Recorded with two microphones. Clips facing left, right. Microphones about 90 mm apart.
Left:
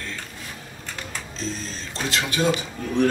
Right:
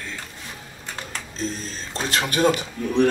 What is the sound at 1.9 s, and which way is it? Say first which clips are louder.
Speech: right 2 dB; 45° right (ahead or behind).